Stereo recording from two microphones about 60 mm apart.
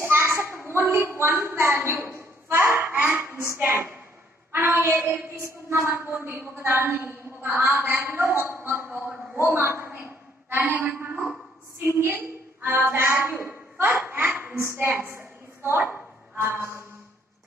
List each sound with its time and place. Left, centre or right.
0.0 s a sound: right
3.4 s a woman's voice: right
7.5 s a woman's voice: right
12.0 s a woman's voice: right
14.6 s a woman's voice: right